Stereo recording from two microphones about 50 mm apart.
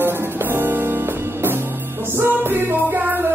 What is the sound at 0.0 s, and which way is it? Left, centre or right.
Music, right.